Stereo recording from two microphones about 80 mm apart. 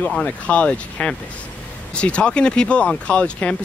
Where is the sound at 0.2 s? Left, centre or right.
Centre.